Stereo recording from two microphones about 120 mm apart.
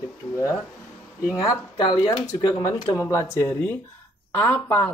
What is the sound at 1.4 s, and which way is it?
Speech, 30° left (ahead or behind).